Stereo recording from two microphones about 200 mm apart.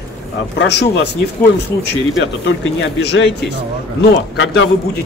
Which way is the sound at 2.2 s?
65° left (ahead or behind).